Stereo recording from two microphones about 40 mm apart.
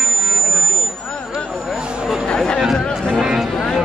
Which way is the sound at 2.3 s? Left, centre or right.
Centre.